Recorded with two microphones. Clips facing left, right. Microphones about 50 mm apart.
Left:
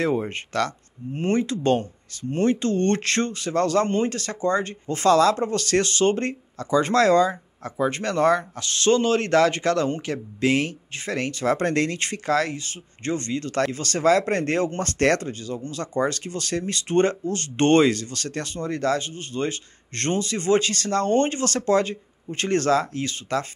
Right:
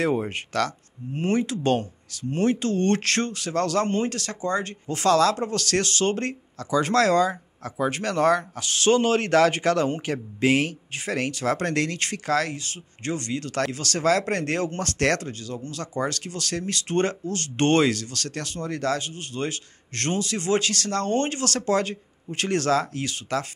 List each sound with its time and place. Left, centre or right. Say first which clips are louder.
0.0 s speech: even; centre
8.5 s speech: even; centre
11.4 s speech: left 4 dB; centre